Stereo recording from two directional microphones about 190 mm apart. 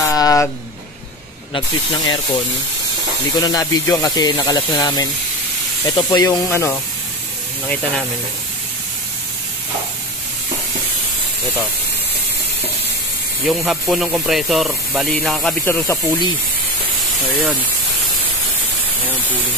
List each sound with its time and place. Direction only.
0.0 s a sound: 15° left (ahead or behind)
3.3 s speech: 20° left (ahead or behind)
13.5 s speech: centre (ahead or behind)